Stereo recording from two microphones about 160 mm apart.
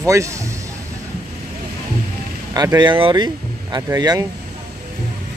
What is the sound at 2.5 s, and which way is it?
Speech, 25° right (ahead or behind).